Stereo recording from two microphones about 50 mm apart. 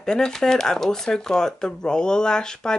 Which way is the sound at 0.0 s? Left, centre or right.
Centre.